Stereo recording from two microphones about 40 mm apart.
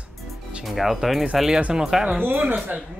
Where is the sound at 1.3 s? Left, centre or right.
Centre.